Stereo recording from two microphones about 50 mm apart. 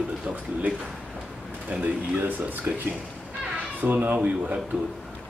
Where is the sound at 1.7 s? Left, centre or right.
Right.